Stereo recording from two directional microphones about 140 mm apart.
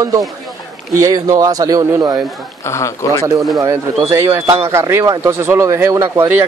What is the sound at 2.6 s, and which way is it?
Speech, 20° left (ahead or behind).